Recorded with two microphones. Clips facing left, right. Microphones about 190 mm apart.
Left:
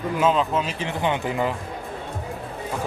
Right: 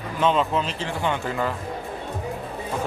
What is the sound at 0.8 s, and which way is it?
Speech, 20° left (ahead or behind).